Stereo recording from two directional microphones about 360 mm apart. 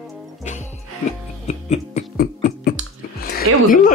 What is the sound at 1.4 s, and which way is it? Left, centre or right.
Music, centre.